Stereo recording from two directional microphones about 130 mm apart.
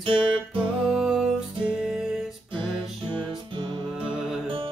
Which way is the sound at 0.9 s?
5° right (ahead or behind).